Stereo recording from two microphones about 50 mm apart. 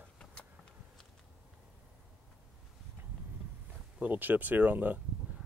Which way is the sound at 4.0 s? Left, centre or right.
Right.